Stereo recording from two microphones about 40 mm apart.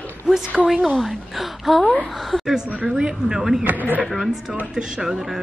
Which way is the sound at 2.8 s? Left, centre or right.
Centre.